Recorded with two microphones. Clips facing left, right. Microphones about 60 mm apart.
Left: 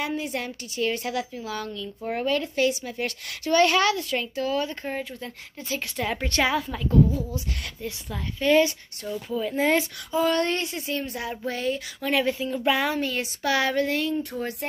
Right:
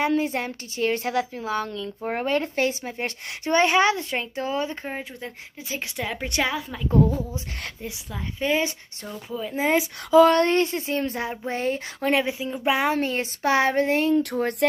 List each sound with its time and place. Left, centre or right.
0.2 s a woman's voice: right
5.9 s a woman's voice: centre
7.2 s a woman's voice: right
8.4 s a woman's voice: centre
8.6 s speech: right
9.3 s a woman's voice: centre
9.6 s speech: centre
10.4 s speech: right
12.5 s a woman's voice: right
14.3 s speech: right